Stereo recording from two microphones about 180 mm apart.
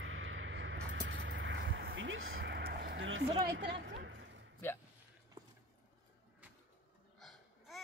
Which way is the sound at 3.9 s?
85° right.